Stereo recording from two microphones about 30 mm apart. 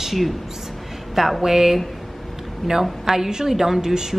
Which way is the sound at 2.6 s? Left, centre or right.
Centre.